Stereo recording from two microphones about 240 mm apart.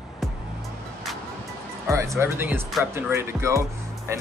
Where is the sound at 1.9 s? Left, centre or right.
Centre.